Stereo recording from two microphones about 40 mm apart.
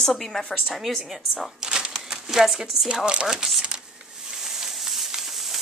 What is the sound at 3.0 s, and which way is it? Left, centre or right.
Speech, right.